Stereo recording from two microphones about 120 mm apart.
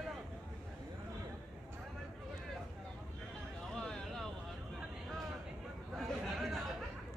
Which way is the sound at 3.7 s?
5° left (ahead or behind).